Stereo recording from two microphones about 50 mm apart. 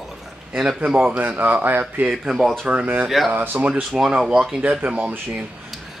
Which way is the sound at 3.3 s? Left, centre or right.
Right.